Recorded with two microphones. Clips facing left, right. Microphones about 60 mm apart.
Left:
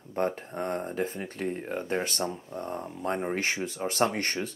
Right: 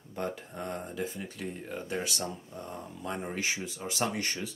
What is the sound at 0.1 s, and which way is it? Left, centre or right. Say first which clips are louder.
Speech: left 6 dB; left.